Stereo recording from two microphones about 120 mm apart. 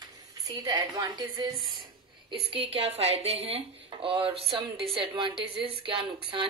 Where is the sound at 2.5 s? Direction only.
55° right (ahead or behind).